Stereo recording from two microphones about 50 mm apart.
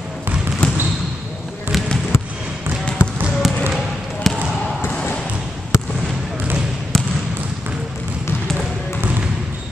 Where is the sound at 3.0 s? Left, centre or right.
Left.